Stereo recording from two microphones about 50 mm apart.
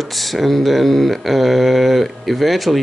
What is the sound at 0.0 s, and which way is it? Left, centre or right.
Speech, centre.